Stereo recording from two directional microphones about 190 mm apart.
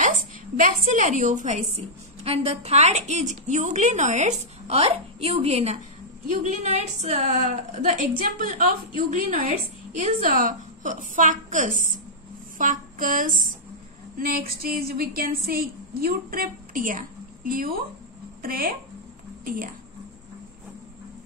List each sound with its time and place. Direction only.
0.6 s a woman's voice: 45° right (ahead or behind)
12.5 s a sound: 45° right (ahead or behind)
14.1 s a woman's voice: 50° right (ahead or behind)